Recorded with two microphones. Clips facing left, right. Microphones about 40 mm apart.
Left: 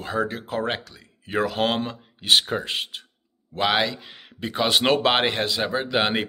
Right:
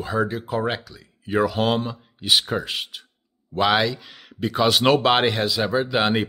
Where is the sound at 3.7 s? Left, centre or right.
Left.